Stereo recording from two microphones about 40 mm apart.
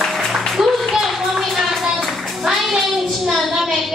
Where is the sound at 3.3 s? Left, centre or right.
Centre.